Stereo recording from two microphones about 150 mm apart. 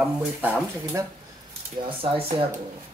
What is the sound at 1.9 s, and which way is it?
Speech, 35° right (ahead or behind).